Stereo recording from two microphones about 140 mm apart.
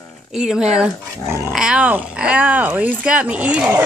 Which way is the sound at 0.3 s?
5° right (ahead or behind).